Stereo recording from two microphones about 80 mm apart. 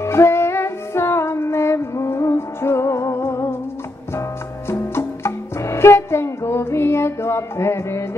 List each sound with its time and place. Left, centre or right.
0.0 s music: left
4.6 s music: left